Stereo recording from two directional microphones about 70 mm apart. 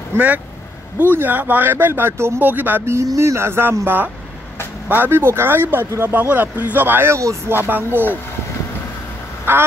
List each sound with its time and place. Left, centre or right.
0.1 s speech: right
0.9 s speech: right
2.8 s speech: right
6.1 s speech: right
7.2 s speech: right
7.5 s speech: right
9.5 s speech: right